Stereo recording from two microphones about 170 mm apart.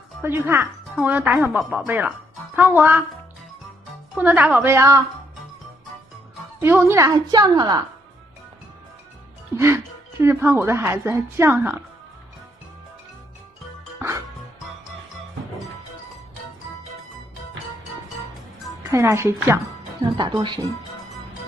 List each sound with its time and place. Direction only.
0.2 s a woman's voice: 15° right (ahead or behind)
4.1 s a woman's voice: 10° right (ahead or behind)
6.6 s a woman's voice: 15° right (ahead or behind)
9.6 s a woman's voice: 15° right (ahead or behind)
18.9 s a woman's voice: 15° right (ahead or behind)
20.2 s a woman's voice: 25° right (ahead or behind)